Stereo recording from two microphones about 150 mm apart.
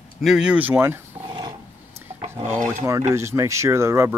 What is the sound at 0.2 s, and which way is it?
Speech, 5° right (ahead or behind).